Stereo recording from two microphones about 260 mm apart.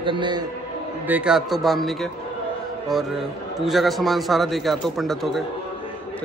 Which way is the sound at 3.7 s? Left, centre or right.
Centre.